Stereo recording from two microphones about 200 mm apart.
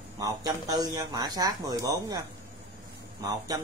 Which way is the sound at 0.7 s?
20° right (ahead or behind).